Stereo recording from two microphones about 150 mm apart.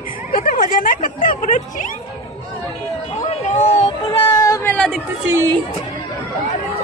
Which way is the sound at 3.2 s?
50° left (ahead or behind).